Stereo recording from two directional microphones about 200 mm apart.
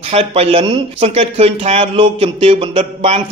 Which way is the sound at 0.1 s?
30° right (ahead or behind).